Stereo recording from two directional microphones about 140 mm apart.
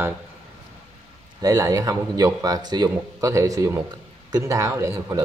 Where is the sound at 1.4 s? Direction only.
25° right (ahead or behind).